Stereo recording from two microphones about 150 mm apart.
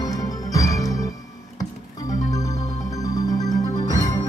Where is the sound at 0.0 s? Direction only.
25° left (ahead or behind).